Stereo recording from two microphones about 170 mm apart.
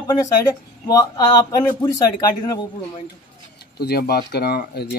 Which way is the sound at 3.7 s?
70° left (ahead or behind).